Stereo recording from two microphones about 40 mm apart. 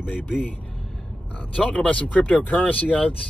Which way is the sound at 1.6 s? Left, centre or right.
Left.